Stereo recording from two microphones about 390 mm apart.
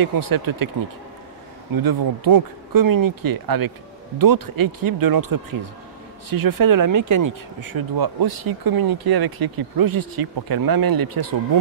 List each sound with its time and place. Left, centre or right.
0.0 s speech: right
1.7 s speech: right